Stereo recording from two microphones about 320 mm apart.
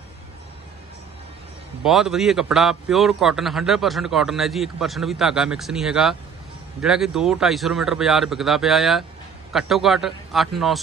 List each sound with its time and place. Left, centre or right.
1.8 s a man's voice: centre